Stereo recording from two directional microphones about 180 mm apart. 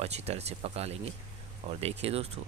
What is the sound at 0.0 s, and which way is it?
Speech, 35° right (ahead or behind).